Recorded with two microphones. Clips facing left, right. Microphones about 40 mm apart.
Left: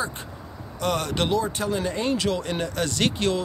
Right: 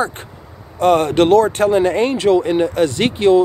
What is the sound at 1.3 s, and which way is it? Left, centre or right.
Speech, right.